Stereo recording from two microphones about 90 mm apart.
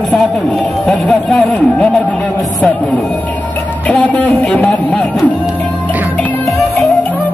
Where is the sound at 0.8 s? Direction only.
10° left (ahead or behind).